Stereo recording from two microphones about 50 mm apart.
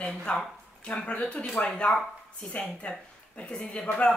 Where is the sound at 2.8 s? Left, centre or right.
Left.